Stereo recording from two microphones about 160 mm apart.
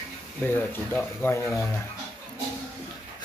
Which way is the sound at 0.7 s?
15° left (ahead or behind).